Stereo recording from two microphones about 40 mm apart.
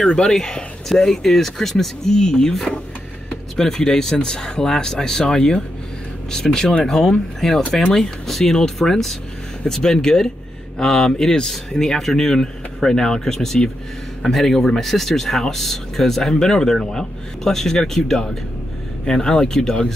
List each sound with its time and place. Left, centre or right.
0.0 s speech: left
2.1 s speech: centre